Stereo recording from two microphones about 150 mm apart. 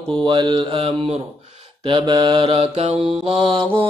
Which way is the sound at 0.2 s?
30° right (ahead or behind).